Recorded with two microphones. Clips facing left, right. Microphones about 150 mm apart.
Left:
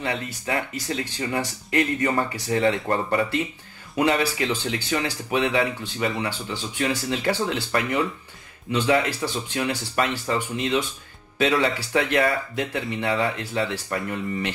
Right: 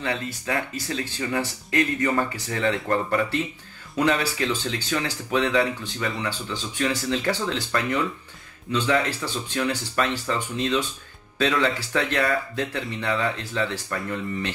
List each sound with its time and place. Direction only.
0.0 s speech: 15° left (ahead or behind)
8.7 s speech: 15° left (ahead or behind)